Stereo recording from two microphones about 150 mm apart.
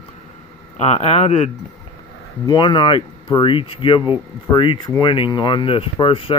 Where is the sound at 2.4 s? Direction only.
30° left (ahead or behind).